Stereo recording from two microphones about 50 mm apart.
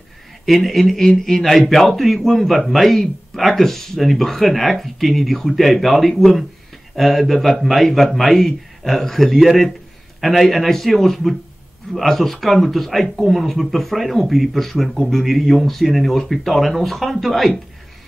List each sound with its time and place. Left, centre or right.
0.5 s a man's voice: centre